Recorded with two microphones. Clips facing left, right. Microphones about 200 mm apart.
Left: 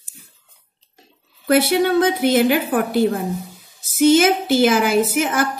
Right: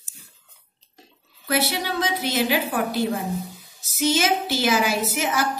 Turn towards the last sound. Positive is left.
turn(degrees=55)  # may be behind; listen again after turning